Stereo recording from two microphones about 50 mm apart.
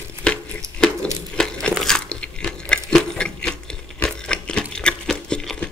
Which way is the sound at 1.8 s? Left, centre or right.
Centre.